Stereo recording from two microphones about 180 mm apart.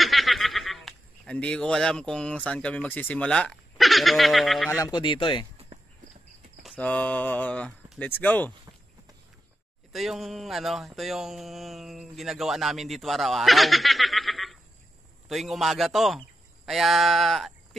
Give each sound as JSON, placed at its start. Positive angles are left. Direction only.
{"t": 0.0, "sound": "speech", "side_deg": 0}
{"t": 4.6, "sound": "speech", "side_deg": 20}
{"t": 6.8, "sound": "speech", "side_deg": 10}
{"t": 9.9, "sound": "speech", "side_deg": 0}